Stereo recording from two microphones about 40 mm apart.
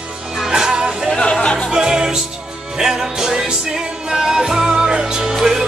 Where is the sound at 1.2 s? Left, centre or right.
Left.